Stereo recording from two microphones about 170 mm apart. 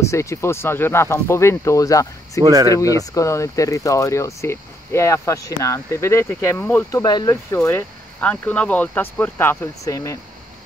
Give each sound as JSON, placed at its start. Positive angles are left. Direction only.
{"t": 0.0, "sound": "speech", "side_deg": 15}
{"t": 2.4, "sound": "speech", "side_deg": -20}
{"t": 2.7, "sound": "speech", "side_deg": 20}